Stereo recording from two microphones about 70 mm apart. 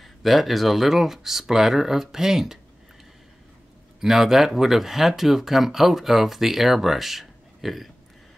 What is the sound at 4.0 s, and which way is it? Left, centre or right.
Speech, centre.